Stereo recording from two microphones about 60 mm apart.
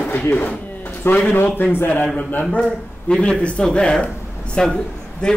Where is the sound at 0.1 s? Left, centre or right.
Left.